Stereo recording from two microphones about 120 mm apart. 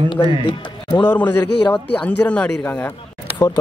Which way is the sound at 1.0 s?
10° left (ahead or behind).